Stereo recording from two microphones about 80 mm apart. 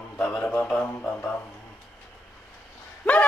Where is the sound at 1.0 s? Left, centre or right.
Left.